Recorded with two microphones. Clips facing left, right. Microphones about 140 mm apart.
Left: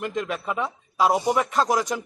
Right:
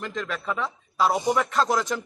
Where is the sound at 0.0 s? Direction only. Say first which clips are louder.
Left 3 dB; 15° left (ahead or behind).